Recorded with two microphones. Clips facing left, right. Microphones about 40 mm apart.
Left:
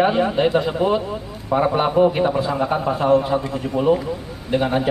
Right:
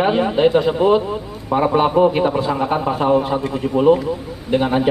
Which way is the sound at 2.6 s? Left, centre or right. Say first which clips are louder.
Right 1 dB; right.